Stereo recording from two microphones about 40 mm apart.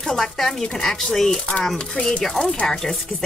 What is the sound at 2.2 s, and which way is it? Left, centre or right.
Speech, centre.